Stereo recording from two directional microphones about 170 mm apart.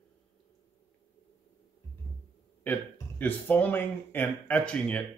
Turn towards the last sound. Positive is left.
turn(degrees=5)  # may be behind; listen again after turning